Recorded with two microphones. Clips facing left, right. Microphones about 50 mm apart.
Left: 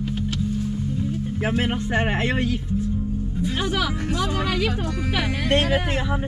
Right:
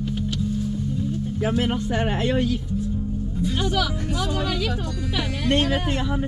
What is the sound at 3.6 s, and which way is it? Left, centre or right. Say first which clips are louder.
Speech: even; centre.